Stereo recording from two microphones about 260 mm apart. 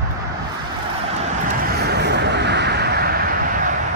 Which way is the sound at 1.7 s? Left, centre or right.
Right.